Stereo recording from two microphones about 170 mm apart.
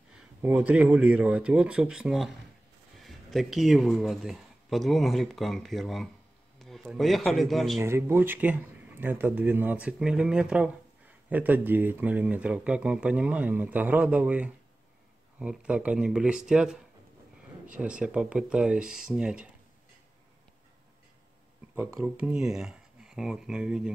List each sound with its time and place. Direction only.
0.1 s speech: 5° right (ahead or behind)
7.8 s speech: 15° right (ahead or behind)
21.7 s speech: 10° right (ahead or behind)